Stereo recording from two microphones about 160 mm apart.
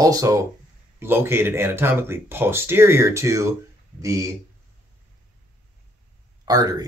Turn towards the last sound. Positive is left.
turn(degrees=-25)  # may be behind; listen again after turning